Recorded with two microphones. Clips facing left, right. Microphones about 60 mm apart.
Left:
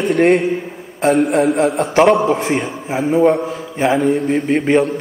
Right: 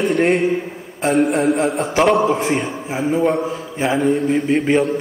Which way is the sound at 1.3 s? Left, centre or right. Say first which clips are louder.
Left 3 dB; left.